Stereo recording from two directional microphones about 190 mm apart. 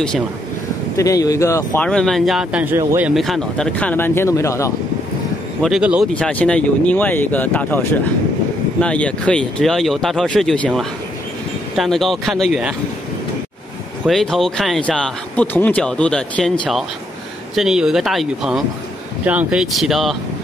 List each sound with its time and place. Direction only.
0.9 s speech: 15° left (ahead or behind)
1.9 s speech: centre (ahead or behind); by 3.1 s 15° right (ahead or behind)
3.2 s speech: centre (ahead or behind)
5.6 s speech: 5° right (ahead or behind)
6.1 s speech: 5° left (ahead or behind)
8.8 s speech: 5° left (ahead or behind)
14.0 s speech: centre (ahead or behind)
17.6 s speech: centre (ahead or behind)